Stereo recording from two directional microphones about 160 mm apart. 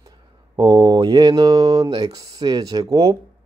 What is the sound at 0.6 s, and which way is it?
Speech, 25° right (ahead or behind).